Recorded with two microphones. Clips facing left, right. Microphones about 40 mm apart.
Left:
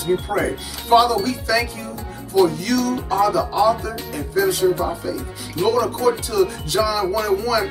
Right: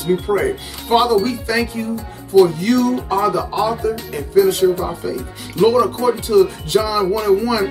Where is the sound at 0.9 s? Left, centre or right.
Right.